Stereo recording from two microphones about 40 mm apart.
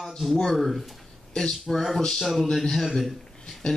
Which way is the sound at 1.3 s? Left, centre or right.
Centre.